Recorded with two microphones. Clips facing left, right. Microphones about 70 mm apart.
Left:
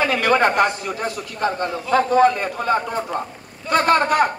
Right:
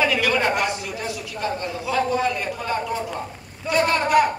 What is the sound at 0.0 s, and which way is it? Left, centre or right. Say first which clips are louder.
A man's voice: left 4 dB; left.